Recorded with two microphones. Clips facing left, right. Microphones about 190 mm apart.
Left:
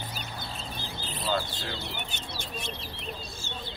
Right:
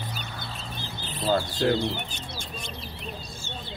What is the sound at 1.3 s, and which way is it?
Speech, 45° right (ahead or behind).